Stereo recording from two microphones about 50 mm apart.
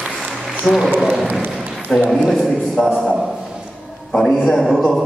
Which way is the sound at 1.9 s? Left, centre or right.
Left.